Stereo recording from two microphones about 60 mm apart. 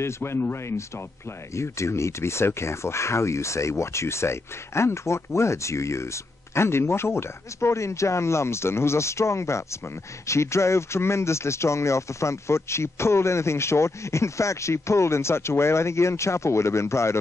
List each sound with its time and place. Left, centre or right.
0.0 s speech: left